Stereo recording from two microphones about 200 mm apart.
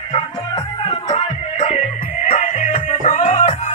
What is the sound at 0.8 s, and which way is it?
Music, 30° left (ahead or behind).